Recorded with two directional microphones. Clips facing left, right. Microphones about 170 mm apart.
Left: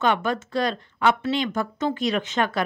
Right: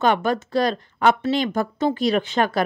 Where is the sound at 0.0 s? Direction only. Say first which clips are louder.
Right 3 dB; 40° right (ahead or behind).